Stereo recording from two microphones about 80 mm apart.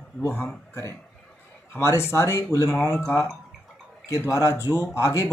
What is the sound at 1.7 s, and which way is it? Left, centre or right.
Speech, left.